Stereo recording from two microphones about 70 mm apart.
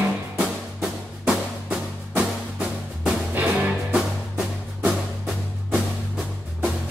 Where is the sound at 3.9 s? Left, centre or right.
Centre.